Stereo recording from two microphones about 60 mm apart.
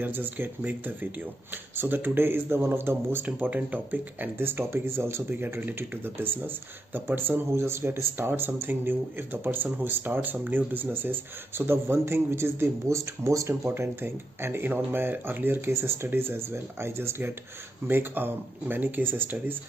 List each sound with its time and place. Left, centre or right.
0.0 s speech: right
3.3 s speech: right
13.7 s speech: right
17.8 s speech: right